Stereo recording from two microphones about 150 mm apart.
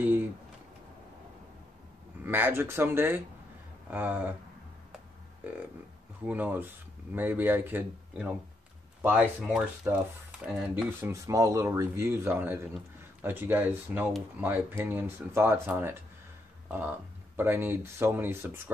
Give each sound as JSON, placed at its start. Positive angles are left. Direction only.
{"t": 2.2, "sound": "speech", "side_deg": -15}
{"t": 6.2, "sound": "speech", "side_deg": -10}
{"t": 17.4, "sound": "speech", "side_deg": -15}